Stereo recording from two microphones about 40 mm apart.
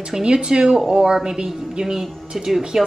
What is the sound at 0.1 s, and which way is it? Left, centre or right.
A woman's voice, right.